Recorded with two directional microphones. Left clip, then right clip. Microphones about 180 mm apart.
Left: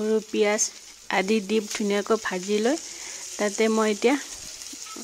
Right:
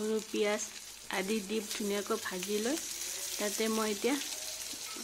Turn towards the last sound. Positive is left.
turn(degrees=60)  # may be behind; listen again after turning